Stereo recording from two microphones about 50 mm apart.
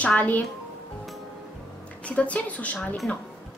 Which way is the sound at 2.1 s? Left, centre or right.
Left.